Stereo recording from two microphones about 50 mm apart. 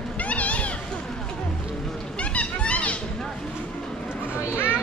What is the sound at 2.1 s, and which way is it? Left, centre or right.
Children playing, left.